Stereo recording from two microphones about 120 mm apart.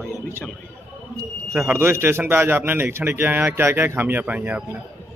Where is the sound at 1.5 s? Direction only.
20° right (ahead or behind).